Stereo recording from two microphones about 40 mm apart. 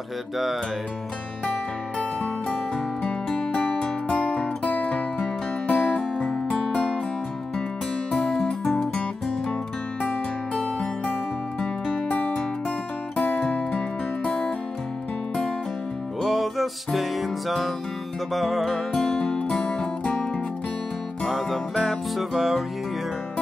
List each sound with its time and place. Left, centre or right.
2.5 s music: left
5.9 s music: centre
8.1 s music: centre
10.0 s music: left
13.3 s music: left
14.2 s music: centre
16.2 s music: centre
18.9 s music: centre
19.3 s music: left
21.3 s music: centre